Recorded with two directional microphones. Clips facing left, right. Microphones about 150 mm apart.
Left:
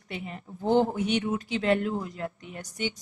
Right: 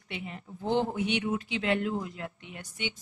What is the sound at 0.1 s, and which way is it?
Speech, 40° left (ahead or behind).